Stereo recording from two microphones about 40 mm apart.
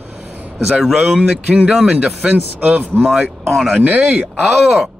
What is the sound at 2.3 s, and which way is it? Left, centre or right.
Speech, right.